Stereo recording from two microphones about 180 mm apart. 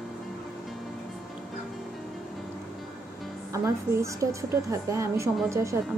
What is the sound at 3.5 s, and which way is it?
Speech, 15° right (ahead or behind).